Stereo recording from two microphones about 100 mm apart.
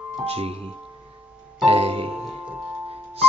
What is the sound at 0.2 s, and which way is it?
Speech, 80° right.